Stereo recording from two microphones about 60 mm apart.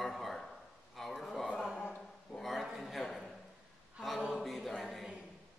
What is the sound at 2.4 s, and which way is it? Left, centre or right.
A man's voice, centre.